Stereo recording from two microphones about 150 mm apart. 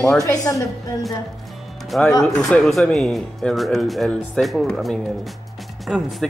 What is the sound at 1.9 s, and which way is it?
Speech, 5° left (ahead or behind).